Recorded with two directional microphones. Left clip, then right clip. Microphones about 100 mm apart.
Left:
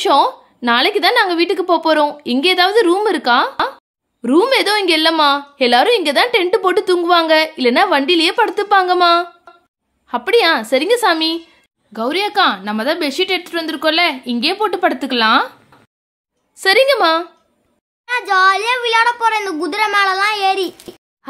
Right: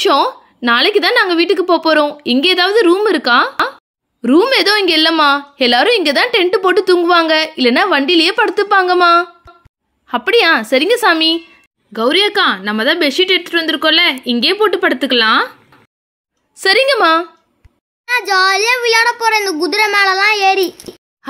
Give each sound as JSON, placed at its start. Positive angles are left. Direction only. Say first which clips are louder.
{"t": 0.0, "sound": "a woman's voice", "louder": "right 1 dB", "side_deg": -15}
{"t": 16.5, "sound": "speech", "louder": "right 1 dB", "side_deg": -20}
{"t": 18.1, "sound": "a child's voice", "louder": "right 1 dB", "side_deg": 0}
{"t": 21.2, "sound": "a sound", "louder": "right 4 dB", "side_deg": -35}